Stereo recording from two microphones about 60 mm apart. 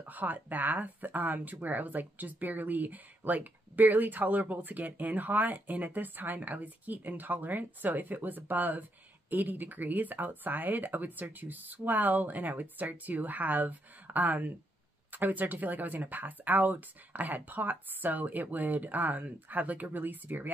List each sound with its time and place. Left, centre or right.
0.0 s speech: right